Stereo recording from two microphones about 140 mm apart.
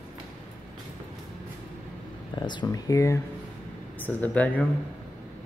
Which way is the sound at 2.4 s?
30° left (ahead or behind).